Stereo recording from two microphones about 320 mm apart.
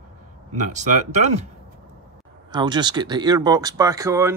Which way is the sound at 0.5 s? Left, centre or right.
Right.